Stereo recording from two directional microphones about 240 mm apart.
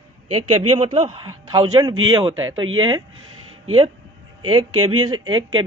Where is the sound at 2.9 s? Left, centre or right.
Right.